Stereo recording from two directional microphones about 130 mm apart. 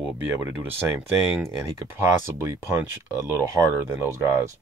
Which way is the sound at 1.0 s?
Centre (ahead or behind).